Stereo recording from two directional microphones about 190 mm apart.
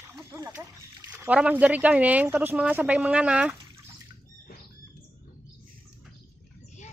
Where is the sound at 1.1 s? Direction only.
5° right (ahead or behind).